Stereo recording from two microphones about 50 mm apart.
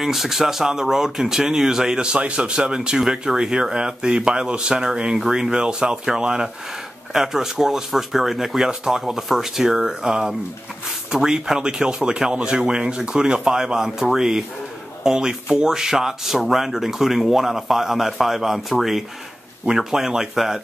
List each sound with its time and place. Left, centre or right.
0.0 s speech: centre
15.4 s speech: centre